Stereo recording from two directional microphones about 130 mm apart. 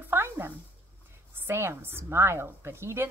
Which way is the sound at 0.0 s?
15° right (ahead or behind).